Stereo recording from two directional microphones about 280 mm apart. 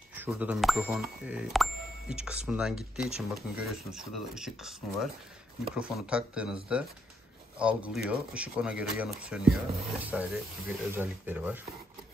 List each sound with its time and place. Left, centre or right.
0.1 s speech: centre